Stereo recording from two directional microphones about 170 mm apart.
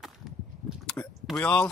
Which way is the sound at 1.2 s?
5° left (ahead or behind).